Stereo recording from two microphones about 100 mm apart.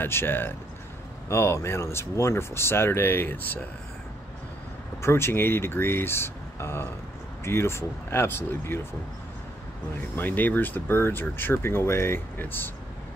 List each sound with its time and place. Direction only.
0.0 s speech: 20° left (ahead or behind)
5.0 s speech: 25° left (ahead or behind)
10.1 s speech: 20° left (ahead or behind)